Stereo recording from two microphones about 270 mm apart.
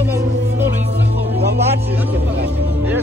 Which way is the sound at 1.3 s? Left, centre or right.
Right.